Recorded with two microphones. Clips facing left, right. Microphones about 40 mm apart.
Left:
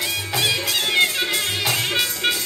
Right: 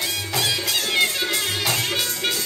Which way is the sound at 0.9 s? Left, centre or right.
Centre.